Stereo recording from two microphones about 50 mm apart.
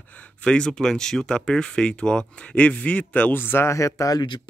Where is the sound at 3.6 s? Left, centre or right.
Left.